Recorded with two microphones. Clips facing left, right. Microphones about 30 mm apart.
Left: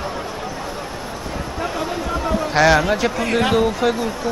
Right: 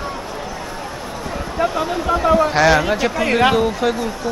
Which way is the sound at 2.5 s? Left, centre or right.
Centre.